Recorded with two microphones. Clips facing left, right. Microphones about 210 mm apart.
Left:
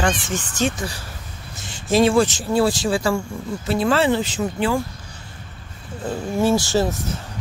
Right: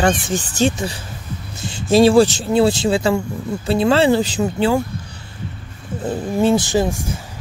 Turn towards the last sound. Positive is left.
turn(degrees=-10)  # may be behind; listen again after turning